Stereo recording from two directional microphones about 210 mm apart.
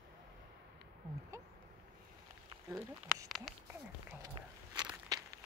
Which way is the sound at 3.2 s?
Centre (ahead or behind).